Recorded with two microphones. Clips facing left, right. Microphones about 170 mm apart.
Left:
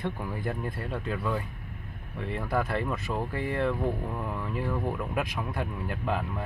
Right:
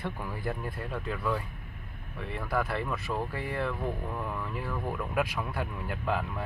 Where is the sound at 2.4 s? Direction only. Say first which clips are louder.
Left 2 dB; 20° left (ahead or behind).